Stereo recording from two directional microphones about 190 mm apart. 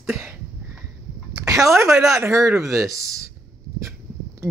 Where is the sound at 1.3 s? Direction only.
15° right (ahead or behind).